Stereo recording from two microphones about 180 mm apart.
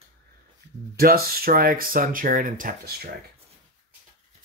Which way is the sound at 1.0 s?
55° right (ahead or behind).